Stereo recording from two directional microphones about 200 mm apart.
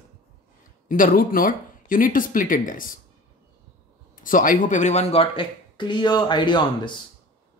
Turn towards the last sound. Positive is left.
turn(degrees=25)  # may be behind; listen again after turning